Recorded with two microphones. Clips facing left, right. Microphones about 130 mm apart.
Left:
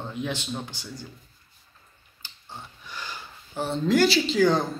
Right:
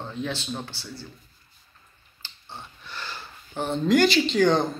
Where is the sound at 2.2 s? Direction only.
10° left (ahead or behind).